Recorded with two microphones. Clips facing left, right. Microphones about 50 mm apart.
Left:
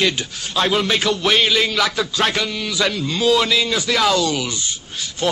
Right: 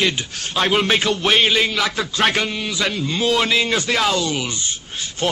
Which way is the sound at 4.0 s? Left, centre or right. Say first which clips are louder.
Left 2 dB; centre.